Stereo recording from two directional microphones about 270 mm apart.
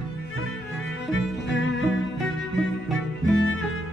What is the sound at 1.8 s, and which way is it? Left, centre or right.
Music, centre.